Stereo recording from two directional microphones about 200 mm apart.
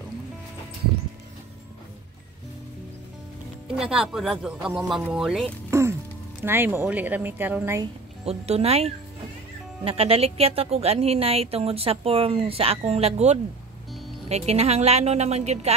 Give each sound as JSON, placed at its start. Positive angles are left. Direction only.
{"t": 3.7, "sound": "speech", "side_deg": -5}
{"t": 5.7, "sound": "music", "side_deg": -15}
{"t": 6.4, "sound": "a woman's voice", "side_deg": -10}
{"t": 8.3, "sound": "a woman's voice", "side_deg": -30}